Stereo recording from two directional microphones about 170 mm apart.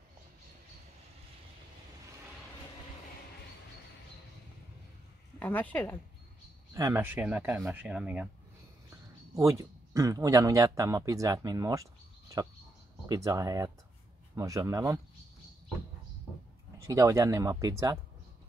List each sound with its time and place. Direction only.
5.4 s speech: 10° left (ahead or behind)
6.7 s speech: 15° right (ahead or behind)
8.9 s speech: 20° right (ahead or behind)
16.8 s speech: 20° right (ahead or behind)